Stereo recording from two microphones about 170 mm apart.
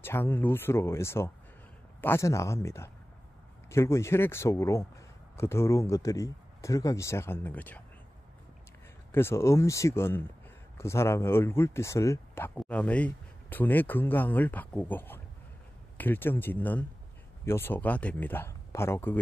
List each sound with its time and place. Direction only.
0.0 s speech: 15° left (ahead or behind)
9.1 s speech: 15° left (ahead or behind)